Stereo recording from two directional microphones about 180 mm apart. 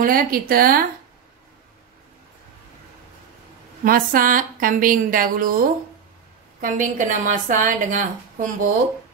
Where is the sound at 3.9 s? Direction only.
50° right (ahead or behind).